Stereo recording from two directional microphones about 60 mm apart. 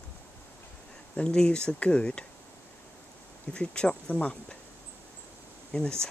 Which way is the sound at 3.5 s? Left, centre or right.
Centre.